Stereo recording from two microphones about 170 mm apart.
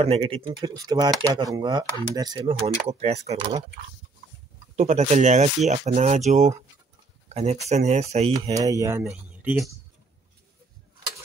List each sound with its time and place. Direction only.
0.0 s speech: 35° right (ahead or behind)
0.6 s speech: 20° right (ahead or behind)
2.9 s speech: 35° right (ahead or behind)
4.7 s speech: 40° right (ahead or behind)
7.2 s a sound: 40° right (ahead or behind)
7.6 s speech: 45° right (ahead or behind)
8.4 s speech: 20° right (ahead or behind)